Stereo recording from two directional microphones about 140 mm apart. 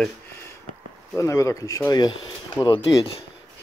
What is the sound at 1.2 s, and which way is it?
Speech, 20° left (ahead or behind).